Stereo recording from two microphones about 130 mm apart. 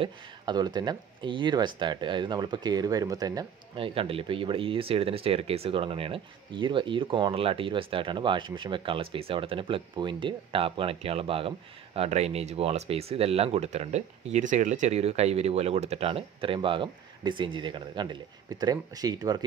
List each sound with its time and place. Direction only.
0.0 s speech: 35° right (ahead or behind)
3.8 s speech: 45° right (ahead or behind)